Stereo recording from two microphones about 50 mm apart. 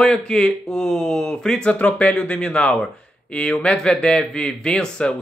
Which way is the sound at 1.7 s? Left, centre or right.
Left.